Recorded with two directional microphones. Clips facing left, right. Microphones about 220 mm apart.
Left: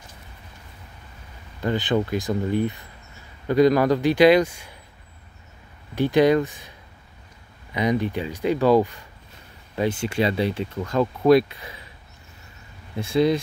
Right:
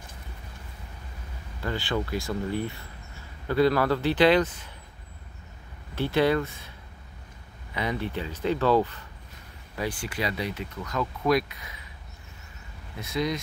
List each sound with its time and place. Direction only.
1.6 s a man's voice: 20° left (ahead or behind)
5.9 s a man's voice: 15° left (ahead or behind)
7.7 s a man's voice: 15° left (ahead or behind)
9.8 s speech: 25° left (ahead or behind)
13.0 s speech: 30° left (ahead or behind)